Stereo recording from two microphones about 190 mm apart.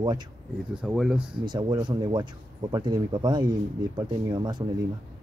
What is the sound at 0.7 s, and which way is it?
Speech, 5° right (ahead or behind).